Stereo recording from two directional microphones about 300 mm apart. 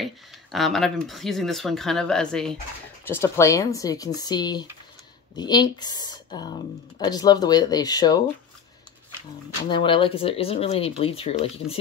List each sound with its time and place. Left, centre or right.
0.0 s speech: centre
9.7 s speech: centre